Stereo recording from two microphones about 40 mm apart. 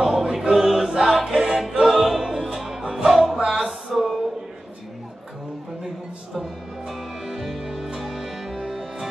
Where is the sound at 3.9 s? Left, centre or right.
Centre.